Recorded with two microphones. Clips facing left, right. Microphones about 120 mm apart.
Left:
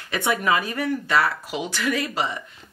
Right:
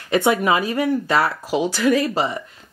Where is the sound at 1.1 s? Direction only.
35° right (ahead or behind).